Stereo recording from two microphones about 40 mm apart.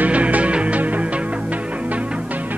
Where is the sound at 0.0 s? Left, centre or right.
Right.